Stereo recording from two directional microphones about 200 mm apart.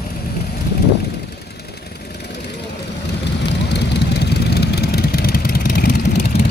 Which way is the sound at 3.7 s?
55° left (ahead or behind).